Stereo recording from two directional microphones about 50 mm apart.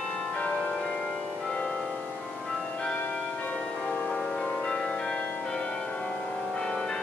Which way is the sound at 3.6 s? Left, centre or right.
Centre.